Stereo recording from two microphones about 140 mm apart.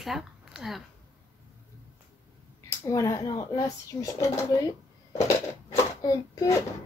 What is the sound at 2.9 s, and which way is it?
Speech, 25° left (ahead or behind).